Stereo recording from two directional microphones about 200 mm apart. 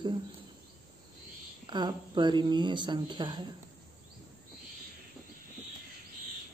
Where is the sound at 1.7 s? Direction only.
20° right (ahead or behind).